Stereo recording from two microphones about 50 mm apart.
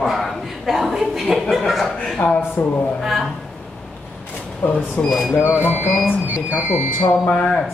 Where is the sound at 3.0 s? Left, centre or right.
Centre.